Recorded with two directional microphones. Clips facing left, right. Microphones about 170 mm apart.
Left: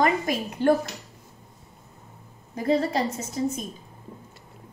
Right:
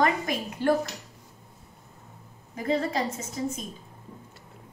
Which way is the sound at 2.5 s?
35° left (ahead or behind).